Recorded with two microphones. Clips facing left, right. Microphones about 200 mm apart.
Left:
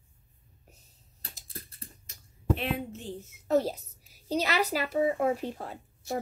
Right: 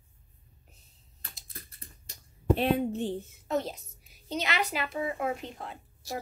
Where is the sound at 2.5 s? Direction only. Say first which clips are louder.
Right 7 dB; 35° right (ahead or behind).